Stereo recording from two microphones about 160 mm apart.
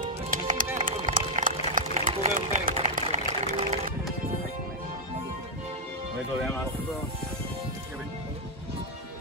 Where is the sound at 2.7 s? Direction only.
40° right (ahead or behind).